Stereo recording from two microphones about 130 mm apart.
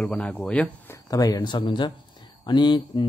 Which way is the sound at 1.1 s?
30° left (ahead or behind).